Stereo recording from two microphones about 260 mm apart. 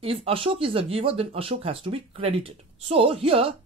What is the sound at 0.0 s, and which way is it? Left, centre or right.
Speech, right.